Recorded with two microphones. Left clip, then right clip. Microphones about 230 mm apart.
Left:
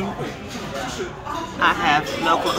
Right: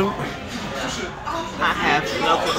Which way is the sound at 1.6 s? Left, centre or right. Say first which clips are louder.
Left 2 dB; left.